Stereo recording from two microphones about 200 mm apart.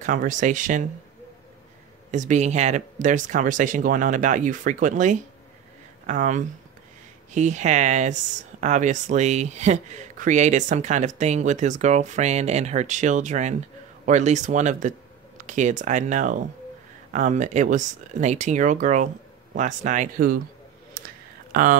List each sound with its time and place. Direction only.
0.0 s speech: 40° right (ahead or behind)
2.0 s speech: 35° right (ahead or behind)
21.0 s a sound: 45° right (ahead or behind)
21.5 s speech: 45° right (ahead or behind)